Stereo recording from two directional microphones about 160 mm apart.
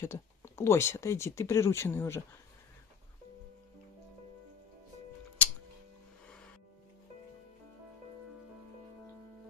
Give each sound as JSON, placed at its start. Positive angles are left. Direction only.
{"t": 0.0, "sound": "speech", "side_deg": 15}